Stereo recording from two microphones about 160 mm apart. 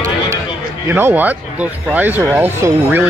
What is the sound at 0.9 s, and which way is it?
Speech, 15° right (ahead or behind).